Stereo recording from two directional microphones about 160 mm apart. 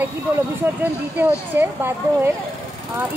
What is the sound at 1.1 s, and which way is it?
A woman's voice, 15° right (ahead or behind).